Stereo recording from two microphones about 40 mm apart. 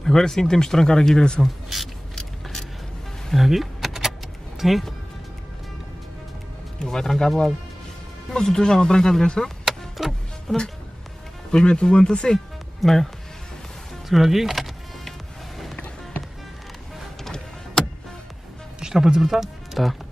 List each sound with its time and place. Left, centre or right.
0.0 s speech: centre
1.4 s speech: centre
2.1 s vehicle: centre
3.3 s power windows: centre
4.6 s speech: centre
6.8 s speech: centre
9.7 s vehicle: centre
10.5 s speech: centre
12.8 s speech: centre
15.0 s music: centre
17.2 s music: centre
18.8 s speech: centre